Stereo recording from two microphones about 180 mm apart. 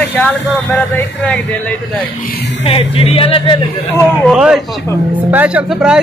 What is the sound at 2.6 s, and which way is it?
Speech, 30° left (ahead or behind).